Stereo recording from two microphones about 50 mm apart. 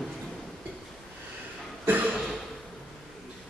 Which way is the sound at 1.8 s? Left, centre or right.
Right.